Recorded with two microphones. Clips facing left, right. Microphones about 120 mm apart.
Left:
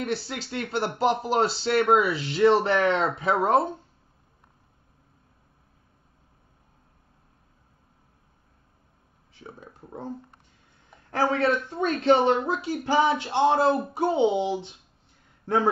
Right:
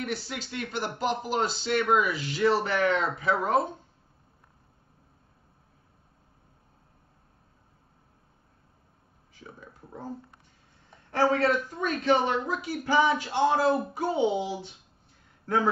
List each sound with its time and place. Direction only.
0.0 s speech: 30° left (ahead or behind)
9.3 s a sound: 25° left (ahead or behind)
11.1 s speech: 25° left (ahead or behind)